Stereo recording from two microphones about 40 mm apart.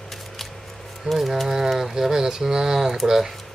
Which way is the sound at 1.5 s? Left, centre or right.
Centre.